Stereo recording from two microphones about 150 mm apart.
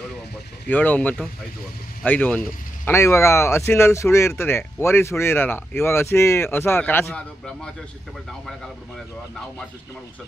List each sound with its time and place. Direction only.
0.7 s speech: 10° left (ahead or behind)